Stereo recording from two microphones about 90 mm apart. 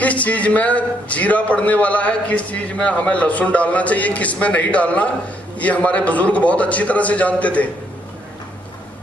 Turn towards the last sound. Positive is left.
turn(degrees=15)  # may be behind; listen again after turning